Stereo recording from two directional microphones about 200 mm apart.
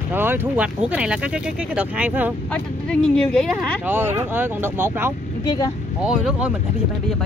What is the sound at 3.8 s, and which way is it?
Speech, 10° right (ahead or behind).